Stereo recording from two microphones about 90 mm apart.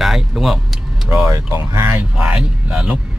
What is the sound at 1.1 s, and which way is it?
Speech, 30° right (ahead or behind).